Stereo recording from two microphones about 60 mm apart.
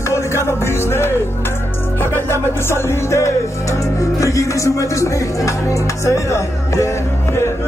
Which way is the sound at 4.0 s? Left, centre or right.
Left.